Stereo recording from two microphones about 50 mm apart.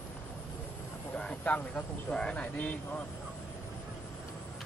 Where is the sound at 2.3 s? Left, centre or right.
Left.